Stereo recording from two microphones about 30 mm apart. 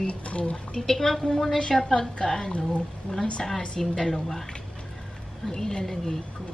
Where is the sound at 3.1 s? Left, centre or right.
Left.